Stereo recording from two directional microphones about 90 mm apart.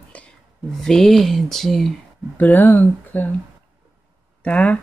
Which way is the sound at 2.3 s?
20° left (ahead or behind).